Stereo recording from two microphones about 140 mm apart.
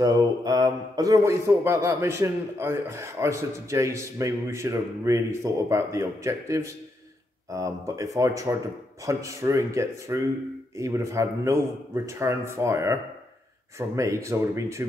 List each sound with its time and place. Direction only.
0.0 s speech: 25° right (ahead or behind)